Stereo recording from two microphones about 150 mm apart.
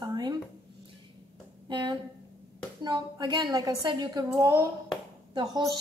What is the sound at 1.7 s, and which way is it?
A woman's voice, 30° right (ahead or behind).